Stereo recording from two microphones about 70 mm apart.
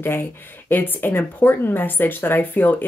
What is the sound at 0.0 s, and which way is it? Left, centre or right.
Speech, left.